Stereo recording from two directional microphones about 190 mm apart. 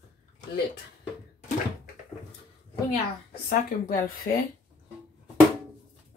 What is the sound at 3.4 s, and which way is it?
Speech, 50° left (ahead or behind).